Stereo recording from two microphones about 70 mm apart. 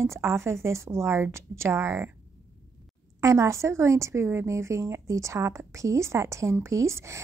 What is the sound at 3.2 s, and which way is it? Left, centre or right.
A woman's voice, right.